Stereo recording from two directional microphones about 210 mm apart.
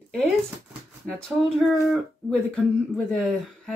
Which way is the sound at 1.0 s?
Centre (ahead or behind).